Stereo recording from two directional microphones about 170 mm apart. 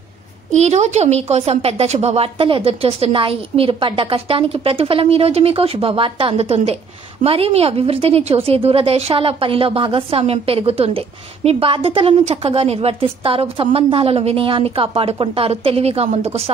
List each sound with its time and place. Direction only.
0.5 s a woman's voice: 40° right (ahead or behind)